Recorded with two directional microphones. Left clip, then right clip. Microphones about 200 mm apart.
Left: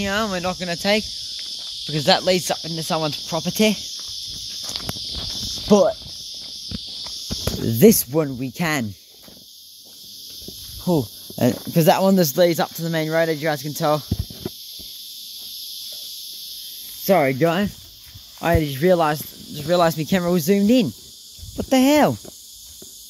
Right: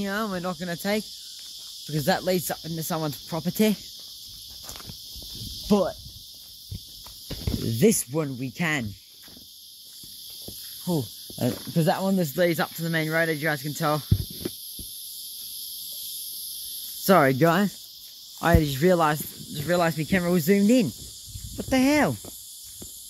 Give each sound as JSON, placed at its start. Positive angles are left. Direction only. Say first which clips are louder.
{"t": 0.0, "sound": "cricket", "louder": "left 7 dB", "side_deg": -5}
{"t": 4.6, "sound": "a sound", "louder": "left 12 dB", "side_deg": 5}
{"t": 5.7, "sound": "speech", "louder": "left 8 dB", "side_deg": 5}
{"t": 7.6, "sound": "speech", "louder": "left 8 dB", "side_deg": 25}
{"t": 10.9, "sound": "speech", "louder": "left 8 dB", "side_deg": 30}
{"t": 12.4, "sound": "speech", "louder": "left 6 dB", "side_deg": 15}
{"t": 17.0, "sound": "speech", "louder": "left 2 dB", "side_deg": -15}
{"t": 18.4, "sound": "cricket", "louder": "left 3 dB", "side_deg": -5}
{"t": 19.7, "sound": "speech", "louder": "left 5 dB", "side_deg": 15}
{"t": 20.3, "sound": "cricket", "louder": "left 3 dB", "side_deg": 5}
{"t": 21.5, "sound": "speech", "louder": "left 6 dB", "side_deg": 10}